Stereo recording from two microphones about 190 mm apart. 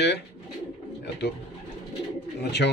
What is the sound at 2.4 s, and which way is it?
Speech, 60° left (ahead or behind).